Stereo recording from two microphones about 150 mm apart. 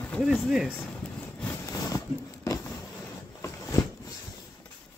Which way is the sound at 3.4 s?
20° left (ahead or behind).